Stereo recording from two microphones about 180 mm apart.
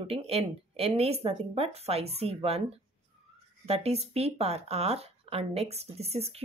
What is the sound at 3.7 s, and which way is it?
Speech, 35° right (ahead or behind).